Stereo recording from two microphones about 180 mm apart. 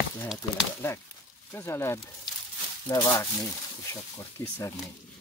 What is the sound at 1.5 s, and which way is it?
Speech, 15° left (ahead or behind).